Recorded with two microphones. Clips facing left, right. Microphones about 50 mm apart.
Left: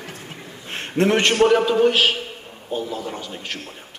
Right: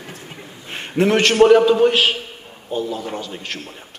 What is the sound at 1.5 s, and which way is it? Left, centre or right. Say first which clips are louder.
A man's voice: right 3 dB; centre.